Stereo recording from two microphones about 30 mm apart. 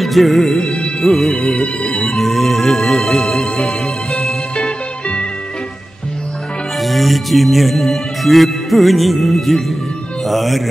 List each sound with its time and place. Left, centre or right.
0.0 s music: centre
1.6 s music: left
2.1 s music: centre
4.6 s music: left
6.8 s speech: centre